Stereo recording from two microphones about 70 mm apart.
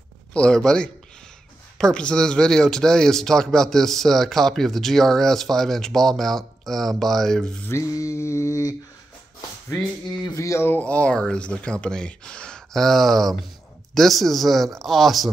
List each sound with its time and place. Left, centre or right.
0.3 s speech: centre
7.7 s mantra: left
10.2 s mantra: left
10.8 s speech: centre